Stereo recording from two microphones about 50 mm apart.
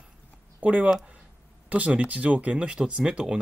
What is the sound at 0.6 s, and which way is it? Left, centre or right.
Speech, right.